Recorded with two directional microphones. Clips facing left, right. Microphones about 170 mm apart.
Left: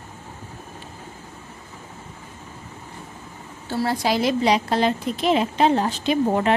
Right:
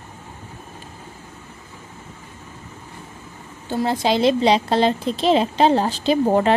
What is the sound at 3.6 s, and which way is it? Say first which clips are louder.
A woman's voice: right 2 dB; 20° right (ahead or behind).